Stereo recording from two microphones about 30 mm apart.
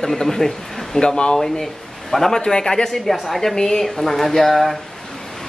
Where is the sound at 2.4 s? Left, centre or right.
Left.